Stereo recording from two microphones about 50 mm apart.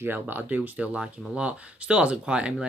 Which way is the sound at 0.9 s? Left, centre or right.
Right.